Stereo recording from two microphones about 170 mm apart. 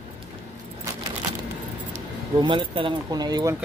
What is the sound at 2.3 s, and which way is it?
Speech, 30° right (ahead or behind).